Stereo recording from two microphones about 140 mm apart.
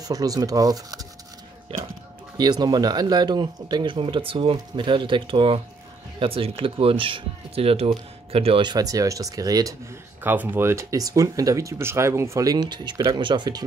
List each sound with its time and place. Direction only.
0.0 s speech: 25° right (ahead or behind)
1.7 s speech: 40° right (ahead or behind)
2.3 s speech: 30° right (ahead or behind)
10.2 s speech: 10° right (ahead or behind); by 13.7 s 30° right (ahead or behind)